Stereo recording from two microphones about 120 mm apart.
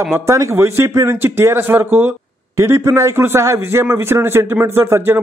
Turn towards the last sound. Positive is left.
turn(degrees=-20)  # may be behind; listen again after turning